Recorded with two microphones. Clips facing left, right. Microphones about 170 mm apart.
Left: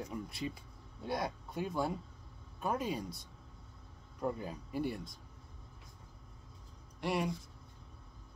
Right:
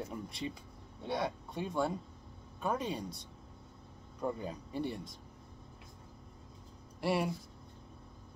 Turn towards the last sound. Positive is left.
turn(degrees=0)  # may be behind; listen again after turning